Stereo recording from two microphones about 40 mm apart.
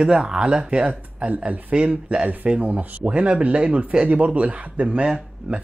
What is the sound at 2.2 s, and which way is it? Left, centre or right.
Speech, right.